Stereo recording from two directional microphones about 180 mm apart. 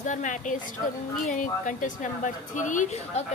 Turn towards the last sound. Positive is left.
turn(degrees=40)  # may be behind; listen again after turning